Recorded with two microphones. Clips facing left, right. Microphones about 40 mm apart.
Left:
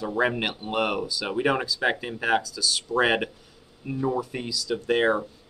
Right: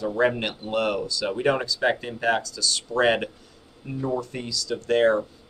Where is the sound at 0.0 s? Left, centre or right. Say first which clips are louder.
Right 2 dB; centre.